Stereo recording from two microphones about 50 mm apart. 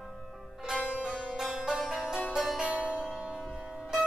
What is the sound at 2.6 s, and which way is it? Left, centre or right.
Music, right.